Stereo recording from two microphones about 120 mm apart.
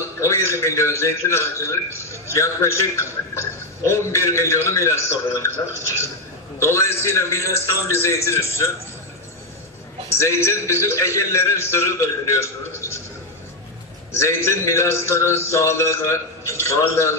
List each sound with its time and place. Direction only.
0.2 s a sound: 25° left (ahead or behind)
0.6 s a man's voice: 25° left (ahead or behind)
6.6 s a man's voice: 25° left (ahead or behind)
10.0 s a man's voice: 25° left (ahead or behind)
14.1 s a man's voice: 25° left (ahead or behind)